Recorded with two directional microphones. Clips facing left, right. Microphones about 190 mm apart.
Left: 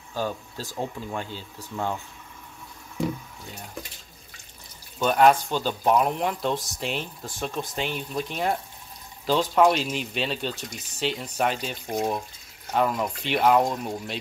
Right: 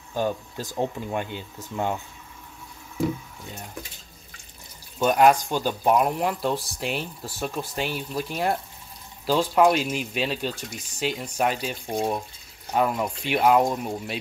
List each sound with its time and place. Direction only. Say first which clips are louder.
0.1 s speech: right 3 dB; 20° right (ahead or behind)
4.9 s speech: right 1 dB; 10° right (ahead or behind)